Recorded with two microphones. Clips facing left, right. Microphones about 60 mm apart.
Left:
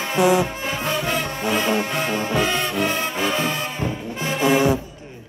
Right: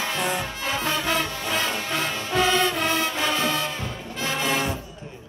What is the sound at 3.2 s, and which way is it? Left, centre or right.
Music, centre.